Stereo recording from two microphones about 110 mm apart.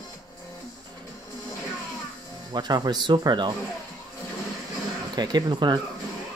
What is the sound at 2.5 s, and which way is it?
Speech, 40° right (ahead or behind).